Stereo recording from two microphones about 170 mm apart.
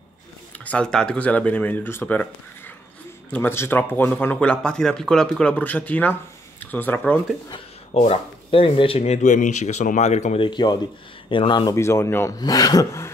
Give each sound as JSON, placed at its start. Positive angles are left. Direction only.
{"t": 0.7, "sound": "speech", "side_deg": 5}
{"t": 3.3, "sound": "speech", "side_deg": 10}
{"t": 7.9, "sound": "speech", "side_deg": 35}